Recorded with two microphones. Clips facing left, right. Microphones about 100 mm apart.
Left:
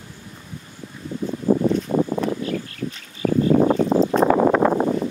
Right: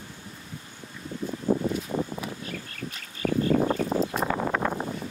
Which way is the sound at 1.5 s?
90° left.